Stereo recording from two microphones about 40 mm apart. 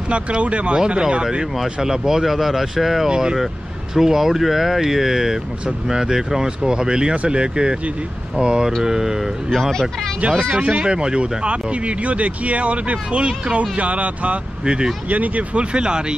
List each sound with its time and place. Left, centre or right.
0.1 s speech: right
1.6 s speech: centre
3.1 s speech: right
3.9 s speech: centre
9.5 s speech: centre
10.2 s speech: right
14.6 s speech: right
15.0 s speech: right